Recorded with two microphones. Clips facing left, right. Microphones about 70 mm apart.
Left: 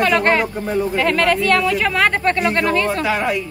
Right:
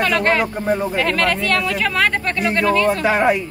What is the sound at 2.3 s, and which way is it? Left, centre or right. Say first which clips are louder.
Speech: left 1 dB; centre.